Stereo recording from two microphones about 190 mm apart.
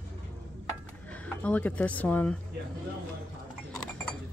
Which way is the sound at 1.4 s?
5° left (ahead or behind).